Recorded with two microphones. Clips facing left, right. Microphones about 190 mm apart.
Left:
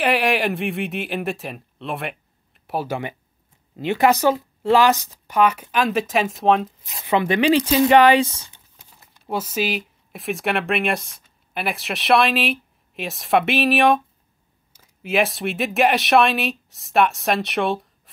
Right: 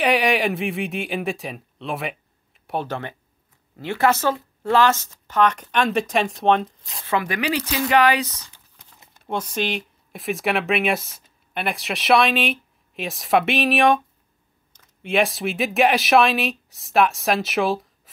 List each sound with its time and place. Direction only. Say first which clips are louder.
0.0 s speech: even; centre (ahead or behind)
7.1 s speech: left 6 dB; 25° left (ahead or behind)
9.3 s speech: left 1 dB; 5° left (ahead or behind)